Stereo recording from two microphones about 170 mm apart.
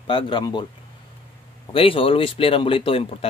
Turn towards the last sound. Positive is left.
turn(degrees=35)  # may be behind; listen again after turning